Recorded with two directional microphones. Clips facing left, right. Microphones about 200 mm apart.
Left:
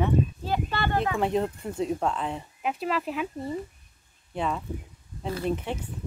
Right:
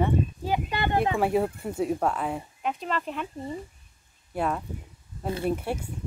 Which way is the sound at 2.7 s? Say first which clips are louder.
Left 2 dB; 5° left (ahead or behind).